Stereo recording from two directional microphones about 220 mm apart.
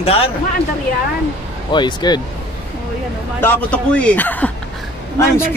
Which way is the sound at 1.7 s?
20° left (ahead or behind).